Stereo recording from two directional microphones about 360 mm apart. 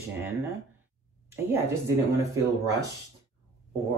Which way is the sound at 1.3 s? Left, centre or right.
Centre.